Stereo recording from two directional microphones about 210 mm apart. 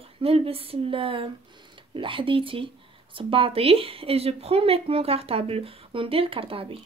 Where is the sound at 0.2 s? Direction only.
25° right (ahead or behind).